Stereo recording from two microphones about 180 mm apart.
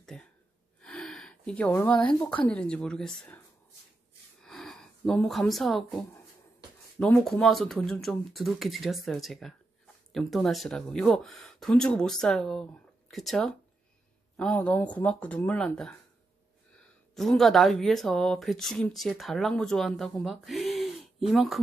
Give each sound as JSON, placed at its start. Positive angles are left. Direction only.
{"t": 0.0, "sound": "gasp", "side_deg": 5}
{"t": 2.1, "sound": "speech", "side_deg": 10}
{"t": 4.4, "sound": "a sound", "side_deg": 0}
{"t": 7.0, "sound": "speech", "side_deg": 5}
{"t": 17.1, "sound": "speech", "side_deg": 0}